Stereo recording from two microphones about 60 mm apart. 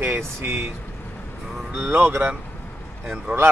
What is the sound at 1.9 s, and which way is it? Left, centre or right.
Speech, right.